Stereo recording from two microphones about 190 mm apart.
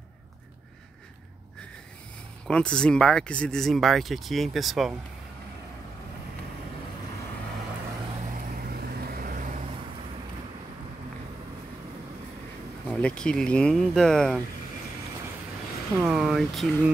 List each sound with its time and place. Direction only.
2.4 s speech: 5° left (ahead or behind)
8.3 s vehicle: 50° right (ahead or behind)
12.9 s speech: 5° left (ahead or behind)
16.0 s speech: 5° right (ahead or behind)